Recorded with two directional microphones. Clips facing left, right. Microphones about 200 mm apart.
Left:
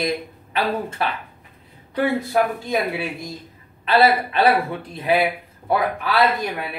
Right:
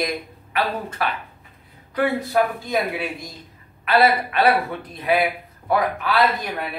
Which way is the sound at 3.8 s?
30° left (ahead or behind).